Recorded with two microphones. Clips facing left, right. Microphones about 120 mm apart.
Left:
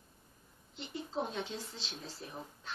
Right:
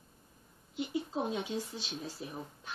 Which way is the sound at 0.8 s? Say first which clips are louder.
Right 4 dB; 10° right (ahead or behind).